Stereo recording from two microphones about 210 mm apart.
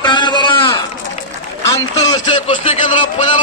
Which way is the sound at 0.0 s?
20° left (ahead or behind).